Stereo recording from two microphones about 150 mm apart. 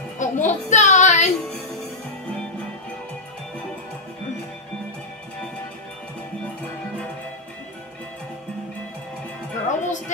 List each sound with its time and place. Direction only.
0.2 s music: 55° left (ahead or behind)
9.7 s music: 55° left (ahead or behind)